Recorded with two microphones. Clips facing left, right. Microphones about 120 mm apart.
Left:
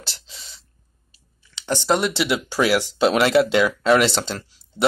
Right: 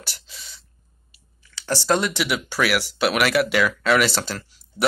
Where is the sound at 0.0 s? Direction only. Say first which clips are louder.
Left 1 dB; 25° left (ahead or behind).